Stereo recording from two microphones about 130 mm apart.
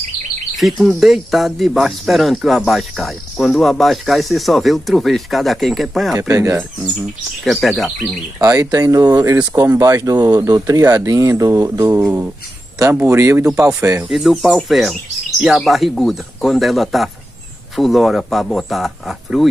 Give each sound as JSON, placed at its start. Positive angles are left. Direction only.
{"t": 0.6, "sound": "speech", "side_deg": 0}
{"t": 6.2, "sound": "speech", "side_deg": -20}
{"t": 7.4, "sound": "speech", "side_deg": 0}
{"t": 8.4, "sound": "speech", "side_deg": -25}
{"t": 14.0, "sound": "speech", "side_deg": 0}